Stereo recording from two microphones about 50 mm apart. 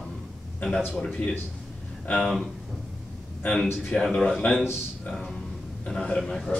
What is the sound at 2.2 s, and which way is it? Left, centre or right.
Speech, centre.